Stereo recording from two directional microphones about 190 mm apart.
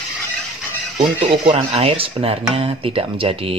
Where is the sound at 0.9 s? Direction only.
30° right (ahead or behind).